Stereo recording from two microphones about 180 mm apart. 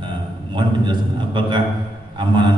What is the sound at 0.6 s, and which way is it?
A man's voice, 25° right (ahead or behind).